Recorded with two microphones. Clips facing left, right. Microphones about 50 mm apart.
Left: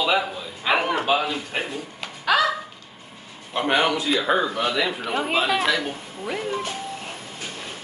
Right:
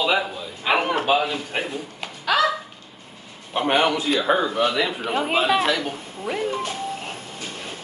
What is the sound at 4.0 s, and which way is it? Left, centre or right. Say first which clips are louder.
Speech: right 1 dB; right.